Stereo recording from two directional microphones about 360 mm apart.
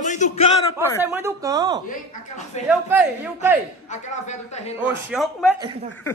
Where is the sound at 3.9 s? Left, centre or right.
Centre.